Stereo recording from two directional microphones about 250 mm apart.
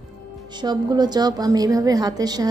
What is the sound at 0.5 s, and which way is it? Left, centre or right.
A woman's voice, centre.